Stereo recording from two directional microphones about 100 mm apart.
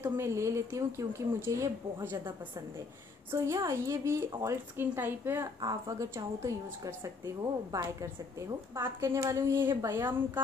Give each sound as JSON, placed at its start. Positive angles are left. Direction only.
{"t": 0.0, "sound": "a woman's voice", "side_deg": -25}
{"t": 3.3, "sound": "a woman's voice", "side_deg": -30}
{"t": 5.6, "sound": "a woman's voice", "side_deg": -40}